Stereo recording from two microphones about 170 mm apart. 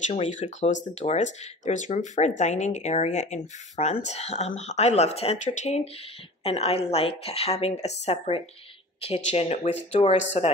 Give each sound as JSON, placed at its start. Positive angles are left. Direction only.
{"t": 0.1, "sound": "speech", "side_deg": 45}